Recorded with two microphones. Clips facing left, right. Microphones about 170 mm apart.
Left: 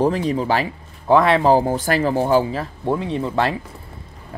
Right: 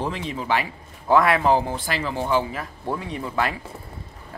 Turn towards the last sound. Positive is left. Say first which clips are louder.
# left 5 dB
turn(degrees=25)  # may be behind; listen again after turning